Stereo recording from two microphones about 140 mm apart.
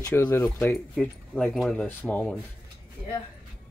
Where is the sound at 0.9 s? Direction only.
5° left (ahead or behind).